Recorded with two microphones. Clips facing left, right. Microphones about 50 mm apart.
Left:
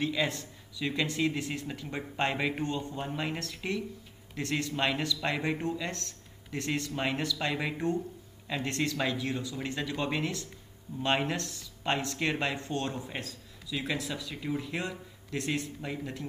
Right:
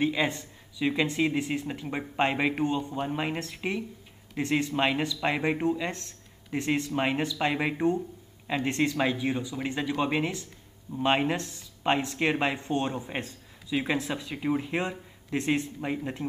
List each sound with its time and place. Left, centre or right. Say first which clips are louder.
0.0 s speech: right 4 dB; right